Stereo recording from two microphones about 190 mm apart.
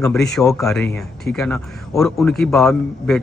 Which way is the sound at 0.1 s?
Centre (ahead or behind).